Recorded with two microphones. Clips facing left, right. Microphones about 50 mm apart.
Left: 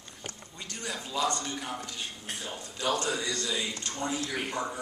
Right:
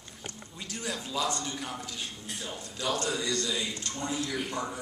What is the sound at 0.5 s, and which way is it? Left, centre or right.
A man's voice, centre.